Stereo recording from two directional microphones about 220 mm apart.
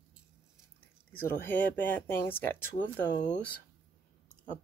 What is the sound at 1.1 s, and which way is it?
Speech, 10° left (ahead or behind).